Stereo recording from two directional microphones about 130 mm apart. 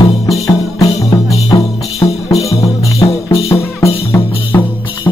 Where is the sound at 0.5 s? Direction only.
25° left (ahead or behind).